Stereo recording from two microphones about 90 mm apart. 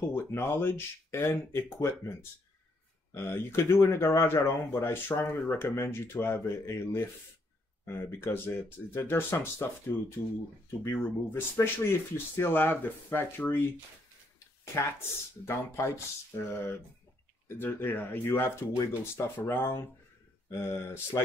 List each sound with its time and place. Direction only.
0.0 s speech: 25° left (ahead or behind)
14.6 s a sound: 30° left (ahead or behind)
15.4 s speech: 30° left (ahead or behind)